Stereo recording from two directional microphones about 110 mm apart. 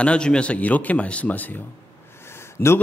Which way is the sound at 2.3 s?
25° left (ahead or behind).